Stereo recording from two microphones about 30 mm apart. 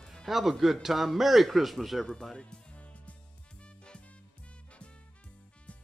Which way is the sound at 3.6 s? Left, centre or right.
Left.